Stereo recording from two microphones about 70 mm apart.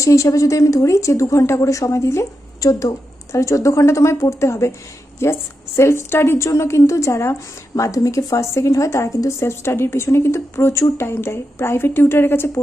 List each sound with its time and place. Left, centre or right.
0.0 s a woman's voice: left